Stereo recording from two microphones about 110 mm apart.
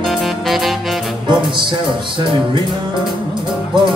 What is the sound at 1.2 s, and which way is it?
Music, 50° right (ahead or behind).